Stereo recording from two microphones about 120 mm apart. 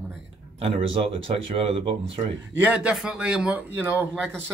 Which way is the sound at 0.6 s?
50° right (ahead or behind).